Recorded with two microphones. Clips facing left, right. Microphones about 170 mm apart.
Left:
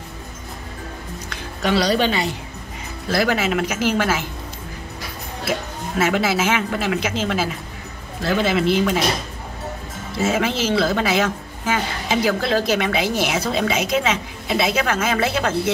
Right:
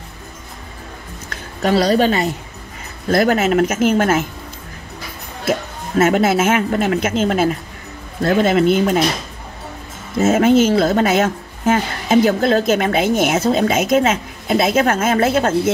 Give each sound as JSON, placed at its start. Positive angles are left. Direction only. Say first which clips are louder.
{"t": 1.3, "sound": "a woman's voice", "louder": "right 4 dB", "side_deg": -40}
{"t": 5.4, "sound": "a woman's voice", "louder": "right 5 dB", "side_deg": -50}
{"t": 10.1, "sound": "a woman's voice", "louder": "right 8 dB", "side_deg": -45}